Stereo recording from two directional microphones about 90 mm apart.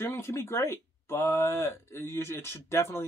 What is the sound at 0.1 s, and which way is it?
Speech, 30° left (ahead or behind).